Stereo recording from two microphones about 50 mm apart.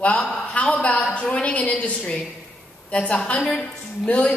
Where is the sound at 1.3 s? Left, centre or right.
Left.